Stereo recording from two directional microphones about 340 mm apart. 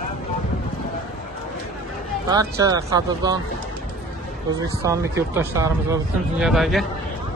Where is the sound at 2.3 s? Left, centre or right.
Centre.